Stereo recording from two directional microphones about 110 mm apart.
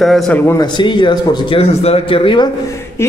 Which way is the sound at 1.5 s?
65° left (ahead or behind).